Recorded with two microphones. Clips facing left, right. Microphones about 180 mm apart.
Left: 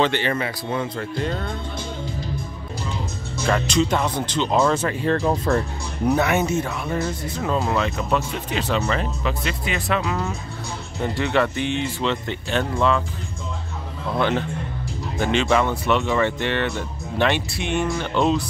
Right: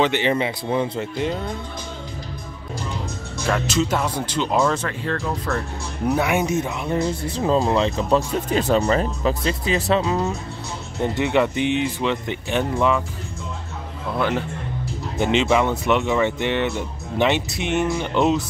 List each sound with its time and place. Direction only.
0.0 s speech: 15° right (ahead or behind)
0.9 s speech: 10° right (ahead or behind)
3.4 s speech: 5° right (ahead or behind)
4.8 s speech: 20° left (ahead or behind)
5.5 s speech: 30° left (ahead or behind)
6.0 s speech: 10° right (ahead or behind); by 8.2 s 30° right (ahead or behind)
8.5 s speech: 45° right (ahead or behind); by 13.0 s 10° right (ahead or behind)
14.1 s speech: 5° right (ahead or behind)
15.1 s speech: 20° right (ahead or behind)